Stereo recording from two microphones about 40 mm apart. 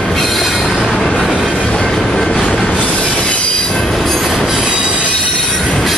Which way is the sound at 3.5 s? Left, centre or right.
Centre.